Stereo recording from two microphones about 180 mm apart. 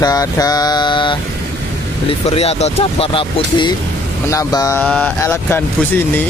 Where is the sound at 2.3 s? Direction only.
35° left (ahead or behind).